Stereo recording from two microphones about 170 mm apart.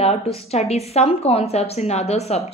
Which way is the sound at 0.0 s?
35° left (ahead or behind).